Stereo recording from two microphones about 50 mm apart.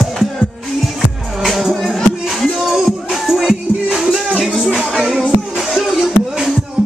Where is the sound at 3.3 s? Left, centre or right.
Centre.